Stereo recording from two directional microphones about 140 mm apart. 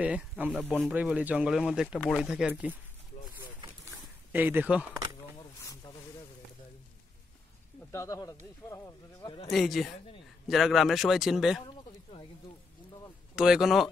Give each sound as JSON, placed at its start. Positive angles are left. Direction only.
{"t": 0.0, "sound": "speech", "side_deg": -10}
{"t": 4.3, "sound": "speech", "side_deg": -15}
{"t": 7.9, "sound": "speech", "side_deg": 20}
{"t": 9.5, "sound": "speech", "side_deg": 0}
{"t": 11.6, "sound": "a sound", "side_deg": 35}
{"t": 13.4, "sound": "speech", "side_deg": -5}